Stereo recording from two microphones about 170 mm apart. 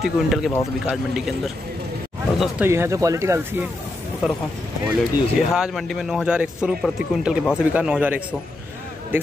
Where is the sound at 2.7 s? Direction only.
15° right (ahead or behind).